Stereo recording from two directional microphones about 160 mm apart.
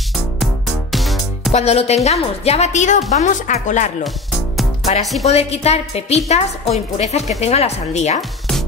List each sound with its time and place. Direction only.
0.9 s music: centre (ahead or behind)
1.5 s a woman's voice: 40° left (ahead or behind)
5.2 s a woman's voice: 40° left (ahead or behind)
8.2 s music: centre (ahead or behind)